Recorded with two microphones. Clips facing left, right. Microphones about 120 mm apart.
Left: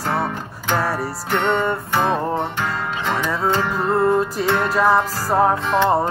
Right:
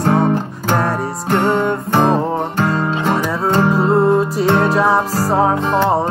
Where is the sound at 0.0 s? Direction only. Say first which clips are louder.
Right 8 dB; 40° right (ahead or behind).